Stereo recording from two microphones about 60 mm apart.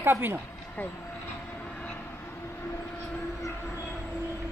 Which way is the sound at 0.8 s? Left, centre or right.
Left.